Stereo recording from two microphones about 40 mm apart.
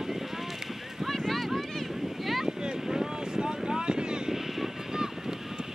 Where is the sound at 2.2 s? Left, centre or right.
Centre.